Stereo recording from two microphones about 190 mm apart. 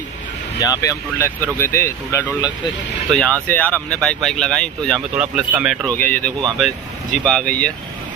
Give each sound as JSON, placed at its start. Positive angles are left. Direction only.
{"t": 0.6, "sound": "speech", "side_deg": 15}
{"t": 3.1, "sound": "speech", "side_deg": 5}
{"t": 5.9, "sound": "speech", "side_deg": 10}